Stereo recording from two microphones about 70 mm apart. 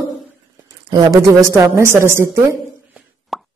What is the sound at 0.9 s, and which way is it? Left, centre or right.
A woman's voice, right.